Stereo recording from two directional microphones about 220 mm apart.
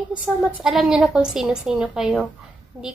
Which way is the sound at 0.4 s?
5° right (ahead or behind).